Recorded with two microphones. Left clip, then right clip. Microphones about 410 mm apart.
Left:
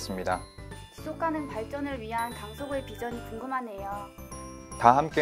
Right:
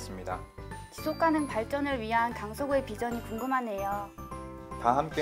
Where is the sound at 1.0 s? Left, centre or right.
Right.